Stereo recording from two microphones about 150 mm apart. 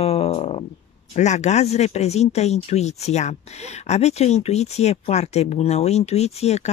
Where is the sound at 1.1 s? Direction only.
50° left (ahead or behind).